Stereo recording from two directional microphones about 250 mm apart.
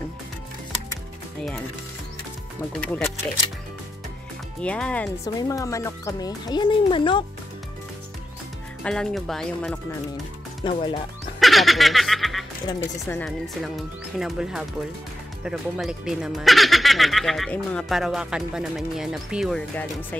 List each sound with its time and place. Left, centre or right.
2.8 s speech: centre
4.6 s speech: centre
8.8 s speech: centre
10.6 s speech: centre
11.3 s music: centre
12.6 s speech: centre